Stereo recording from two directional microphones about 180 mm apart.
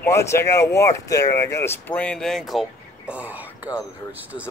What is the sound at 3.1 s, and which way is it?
Whispering, 10° right (ahead or behind).